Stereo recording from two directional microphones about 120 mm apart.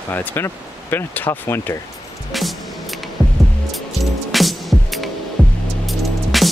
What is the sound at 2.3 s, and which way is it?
Music, centre (ahead or behind).